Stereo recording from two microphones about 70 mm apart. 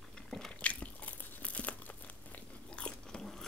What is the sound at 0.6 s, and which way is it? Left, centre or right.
Crunch, centre.